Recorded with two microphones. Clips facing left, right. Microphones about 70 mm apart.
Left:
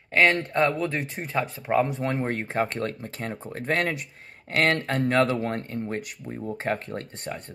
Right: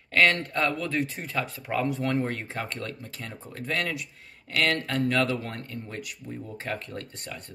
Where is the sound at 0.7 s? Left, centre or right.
Left.